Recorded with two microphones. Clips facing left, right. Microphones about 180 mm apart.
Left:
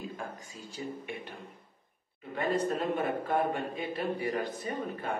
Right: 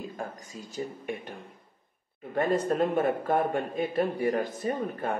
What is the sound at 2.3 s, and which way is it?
A man's voice, 50° right (ahead or behind).